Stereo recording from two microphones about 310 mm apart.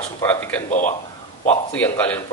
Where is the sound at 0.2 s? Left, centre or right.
Centre.